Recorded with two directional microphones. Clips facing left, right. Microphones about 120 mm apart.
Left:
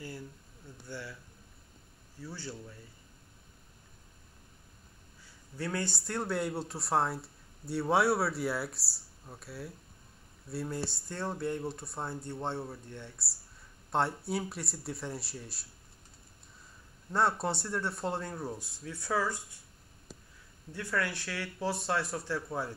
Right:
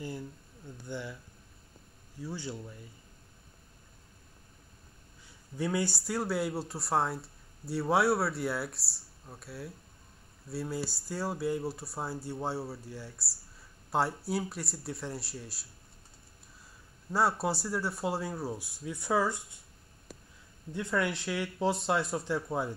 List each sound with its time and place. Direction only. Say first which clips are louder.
0.8 s speech: right 4 dB; 20° right (ahead or behind)
2.1 s speech: right 4 dB; 15° right (ahead or behind)
5.2 s speech: right 4 dB; 15° right (ahead or behind)
17.1 s speech: right 1 dB; 5° right (ahead or behind); by 19.6 s 20° right (ahead or behind)
20.7 s speech: right 3 dB; 20° right (ahead or behind)